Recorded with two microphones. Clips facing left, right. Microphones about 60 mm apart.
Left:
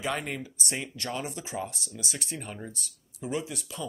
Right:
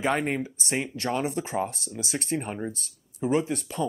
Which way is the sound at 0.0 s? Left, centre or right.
Right.